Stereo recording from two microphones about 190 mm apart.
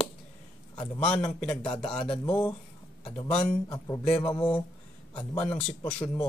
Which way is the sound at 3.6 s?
20° left (ahead or behind).